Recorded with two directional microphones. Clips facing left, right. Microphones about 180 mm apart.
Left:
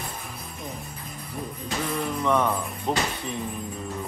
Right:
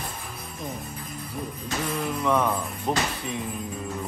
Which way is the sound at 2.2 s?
Centre (ahead or behind).